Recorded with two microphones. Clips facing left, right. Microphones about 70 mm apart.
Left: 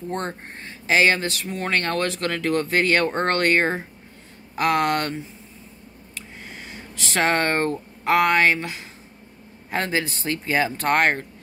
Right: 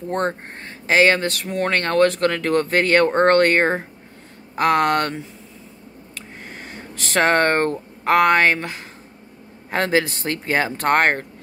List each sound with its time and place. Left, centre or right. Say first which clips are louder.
0.1 s speech: right 7 dB; right
9.7 s speech: right 5 dB; right